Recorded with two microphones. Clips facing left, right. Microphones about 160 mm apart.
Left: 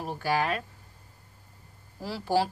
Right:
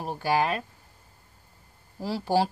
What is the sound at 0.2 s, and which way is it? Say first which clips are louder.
Speech: right 3 dB; 20° right (ahead or behind).